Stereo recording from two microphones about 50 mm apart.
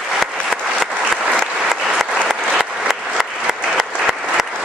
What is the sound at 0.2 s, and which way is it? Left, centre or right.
Applause, centre.